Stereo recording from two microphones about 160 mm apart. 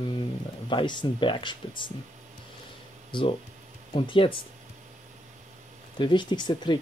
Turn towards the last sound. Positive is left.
turn(degrees=30)  # may be behind; listen again after turning